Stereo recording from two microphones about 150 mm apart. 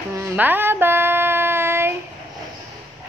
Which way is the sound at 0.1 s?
15° right (ahead or behind).